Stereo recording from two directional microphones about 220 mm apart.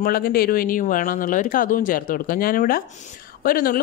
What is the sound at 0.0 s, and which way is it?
A man's voice, 45° left (ahead or behind).